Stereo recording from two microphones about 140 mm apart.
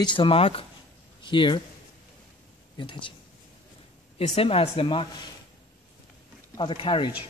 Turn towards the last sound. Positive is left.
turn(degrees=35)  # may be behind; listen again after turning